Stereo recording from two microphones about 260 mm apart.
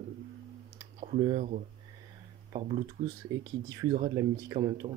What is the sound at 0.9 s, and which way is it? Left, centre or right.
Speech, right.